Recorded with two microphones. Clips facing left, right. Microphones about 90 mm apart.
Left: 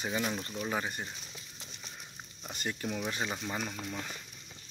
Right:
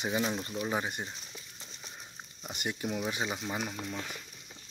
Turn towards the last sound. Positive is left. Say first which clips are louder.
# right 1 dB
turn(degrees=-10)  # may be behind; listen again after turning